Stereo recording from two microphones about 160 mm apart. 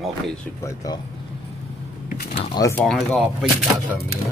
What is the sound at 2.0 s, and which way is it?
Speech, 55° left (ahead or behind).